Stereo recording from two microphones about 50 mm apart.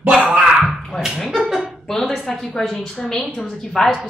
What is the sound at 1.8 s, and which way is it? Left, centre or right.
A woman's voice, centre.